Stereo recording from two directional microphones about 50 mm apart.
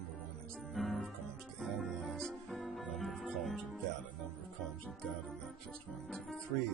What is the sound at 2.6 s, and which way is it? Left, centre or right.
Music, centre.